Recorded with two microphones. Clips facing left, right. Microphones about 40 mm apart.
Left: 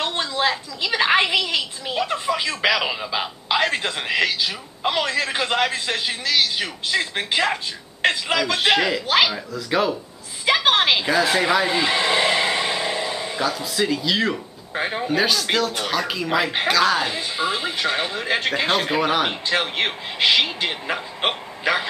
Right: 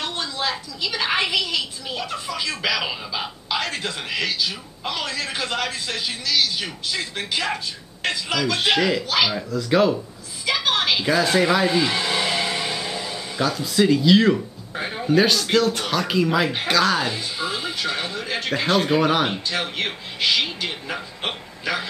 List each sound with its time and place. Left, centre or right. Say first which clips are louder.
0.0 s a sound: left 4 dB; left
0.7 s speech: left 5 dB; left
4.3 s speech: left 1 dB; centre
8.5 s speech: even; centre
9.0 s speech: left 3 dB; left
9.3 s speech: right 3 dB; centre
10.4 s a sound: left 4 dB; left
11.1 s a sound: even; centre; by 13.3 s left
13.4 s speech: right 4 dB; centre
14.7 s speech: left 5 dB; left
15.0 s speech: right 4 dB; centre
17.1 s speech: left 3 dB; left
18.8 s speech: right 1 dB; centre
19.2 s a man's voice: left 2 dB; centre